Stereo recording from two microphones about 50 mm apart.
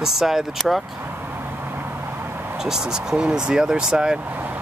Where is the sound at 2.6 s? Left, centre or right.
Centre.